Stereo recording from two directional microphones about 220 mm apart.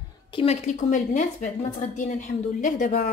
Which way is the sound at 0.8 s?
35° left (ahead or behind).